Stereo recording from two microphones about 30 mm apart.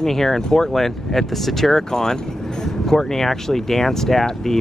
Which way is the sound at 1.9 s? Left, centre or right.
Centre.